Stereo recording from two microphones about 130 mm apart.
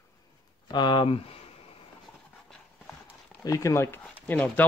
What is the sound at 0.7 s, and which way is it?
Speech, 35° left (ahead or behind).